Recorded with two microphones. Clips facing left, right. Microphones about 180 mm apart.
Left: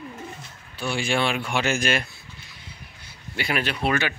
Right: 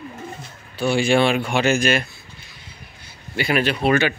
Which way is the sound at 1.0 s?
65° right (ahead or behind).